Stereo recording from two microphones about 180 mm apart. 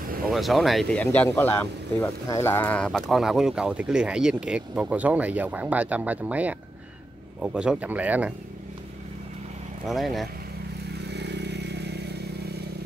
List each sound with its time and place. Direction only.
0.3 s speech: centre (ahead or behind)
9.8 s speech: centre (ahead or behind)
11.0 s vehicle: 70° right (ahead or behind)